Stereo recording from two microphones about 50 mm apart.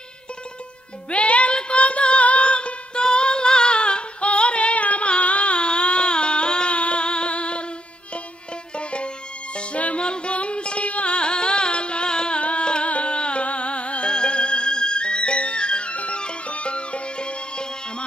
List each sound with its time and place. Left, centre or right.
1.1 s female singing: left
8.7 s music: left